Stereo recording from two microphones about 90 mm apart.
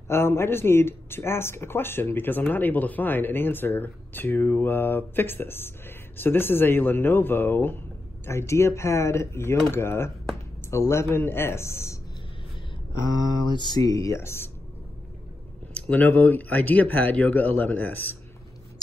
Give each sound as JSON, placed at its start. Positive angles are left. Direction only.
{"t": 0.1, "sound": "speech", "side_deg": 30}
{"t": 13.5, "sound": "speech", "side_deg": 55}
{"t": 15.7, "sound": "speech", "side_deg": 15}